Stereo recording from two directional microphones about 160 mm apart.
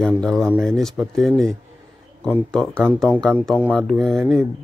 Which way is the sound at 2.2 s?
5° left (ahead or behind).